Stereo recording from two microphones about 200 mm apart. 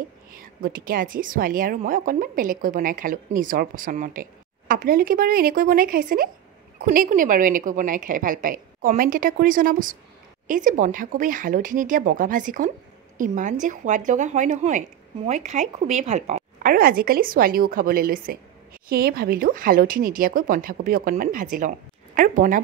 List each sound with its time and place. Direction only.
0.4 s a woman's voice: 45° right (ahead or behind)